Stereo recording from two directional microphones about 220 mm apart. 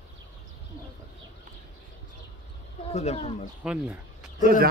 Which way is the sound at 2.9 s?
30° left (ahead or behind).